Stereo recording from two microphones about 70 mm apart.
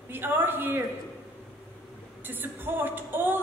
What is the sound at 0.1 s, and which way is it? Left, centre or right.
Speech, right.